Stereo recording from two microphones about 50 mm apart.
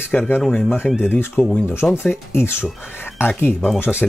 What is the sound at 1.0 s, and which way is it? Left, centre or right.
Speech, left.